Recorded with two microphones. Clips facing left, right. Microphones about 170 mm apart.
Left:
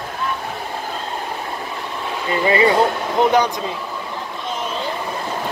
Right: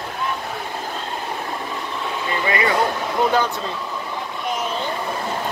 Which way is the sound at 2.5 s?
25° left (ahead or behind).